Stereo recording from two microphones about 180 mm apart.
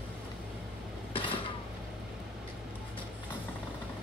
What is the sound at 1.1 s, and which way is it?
Creak, 30° left (ahead or behind).